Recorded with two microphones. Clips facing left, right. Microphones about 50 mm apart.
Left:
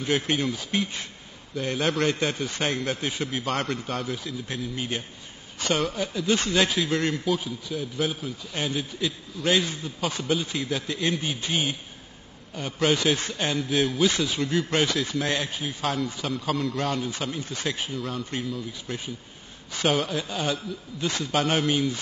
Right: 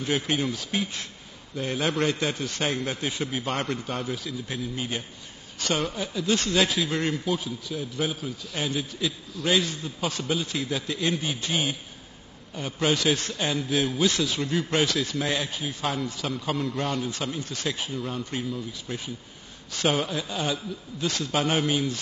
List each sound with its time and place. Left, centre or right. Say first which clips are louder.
0.0 s a man's voice: left 1 dB; centre
1.5 s a man's voice: left 1 dB; centre
7.3 s a man's voice: left 1 dB; centre
12.9 s a man's voice: left 1 dB; centre
14.0 s speech: left 1 dB; centre
14.4 s a man's voice: left 1 dB; centre
14.9 s a man's voice: left 1 dB; centre